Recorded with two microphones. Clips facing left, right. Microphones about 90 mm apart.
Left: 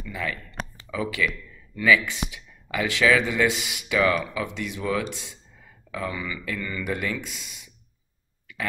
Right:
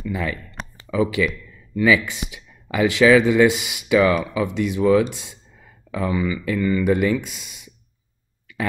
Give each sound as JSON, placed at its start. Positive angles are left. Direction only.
{"t": 0.1, "sound": "typing", "side_deg": -20}
{"t": 0.9, "sound": "speech", "side_deg": -20}
{"t": 6.0, "sound": "speech", "side_deg": -35}
{"t": 6.3, "sound": "speech", "side_deg": -20}